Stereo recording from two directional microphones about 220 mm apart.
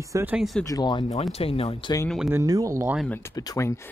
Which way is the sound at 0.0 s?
10° right (ahead or behind).